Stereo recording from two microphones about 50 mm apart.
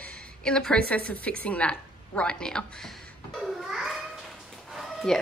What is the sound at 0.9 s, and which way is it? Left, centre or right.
A woman's voice, left.